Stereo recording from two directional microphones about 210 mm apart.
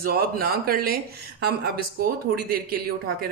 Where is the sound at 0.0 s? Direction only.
45° right (ahead or behind).